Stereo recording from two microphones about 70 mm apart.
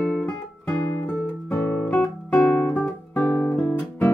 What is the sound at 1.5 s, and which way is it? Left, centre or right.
Guitar, left.